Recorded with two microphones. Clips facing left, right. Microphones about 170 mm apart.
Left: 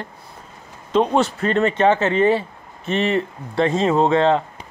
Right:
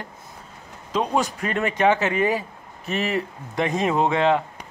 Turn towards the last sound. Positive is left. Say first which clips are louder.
# left 4 dB
turn(degrees=-10)  # may be behind; listen again after turning